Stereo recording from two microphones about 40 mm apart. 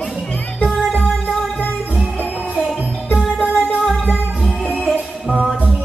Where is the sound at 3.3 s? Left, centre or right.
Right.